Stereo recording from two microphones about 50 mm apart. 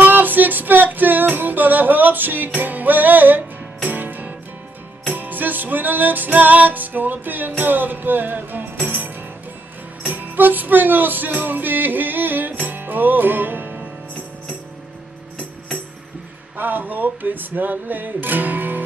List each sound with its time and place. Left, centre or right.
0.0 s music: right
16.5 s music: right